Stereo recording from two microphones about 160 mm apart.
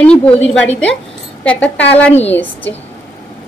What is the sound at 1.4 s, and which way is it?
A woman's voice, 10° left (ahead or behind).